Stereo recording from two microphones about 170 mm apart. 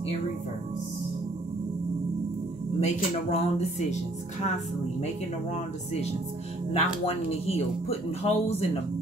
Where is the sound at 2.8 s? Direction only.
40° left (ahead or behind).